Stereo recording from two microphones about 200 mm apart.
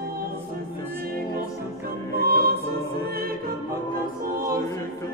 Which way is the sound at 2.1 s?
50° right (ahead or behind).